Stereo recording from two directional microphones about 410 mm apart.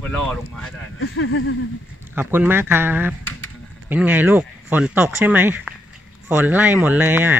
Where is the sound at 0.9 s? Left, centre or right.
Left.